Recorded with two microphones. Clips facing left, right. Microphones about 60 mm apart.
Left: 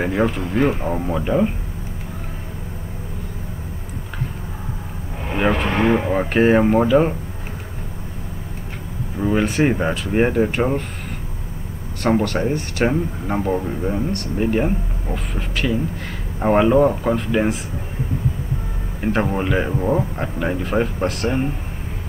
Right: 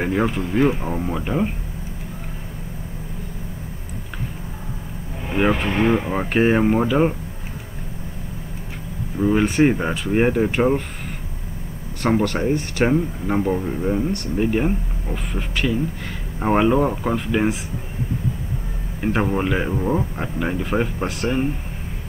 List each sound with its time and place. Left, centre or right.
0.0 s speech: centre
1.2 s speech: centre
5.3 s speech: centre
5.7 s speech: left
6.1 s speech: centre
9.2 s speech: centre
12.0 s speech: centre
19.0 s speech: centre